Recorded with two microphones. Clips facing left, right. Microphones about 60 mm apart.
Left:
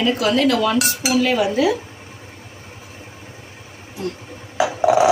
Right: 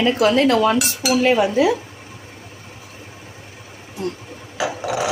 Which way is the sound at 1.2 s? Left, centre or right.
Right.